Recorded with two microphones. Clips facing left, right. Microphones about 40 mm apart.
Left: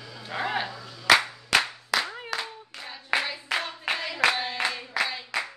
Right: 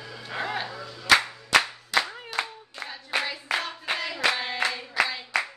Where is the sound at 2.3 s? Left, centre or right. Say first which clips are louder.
Right 2 dB; left.